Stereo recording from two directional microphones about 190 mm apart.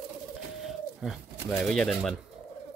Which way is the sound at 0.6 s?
Centre (ahead or behind).